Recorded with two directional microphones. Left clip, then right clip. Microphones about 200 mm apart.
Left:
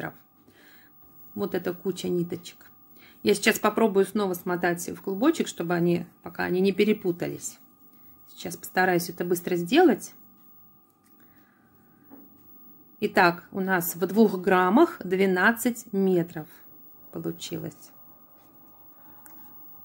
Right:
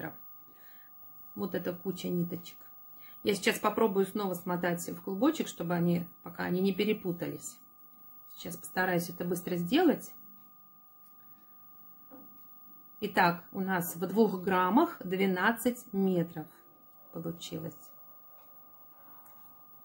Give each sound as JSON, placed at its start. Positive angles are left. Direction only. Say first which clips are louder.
{"t": 1.4, "sound": "speech", "louder": "left 7 dB", "side_deg": 50}
{"t": 13.0, "sound": "speech", "louder": "left 6 dB", "side_deg": 50}